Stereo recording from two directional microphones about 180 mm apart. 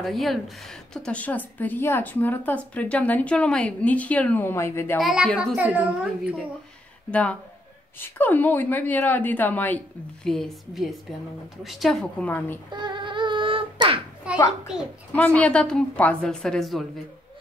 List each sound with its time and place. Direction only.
0.0 s a woman's voice: centre (ahead or behind)
4.9 s a woman's voice: centre (ahead or behind)
7.1 s a woman's voice: 5° left (ahead or behind)
12.7 s a sound: 25° right (ahead or behind)
14.3 s a sound: 5° right (ahead or behind)
15.1 s a woman's voice: 10° left (ahead or behind)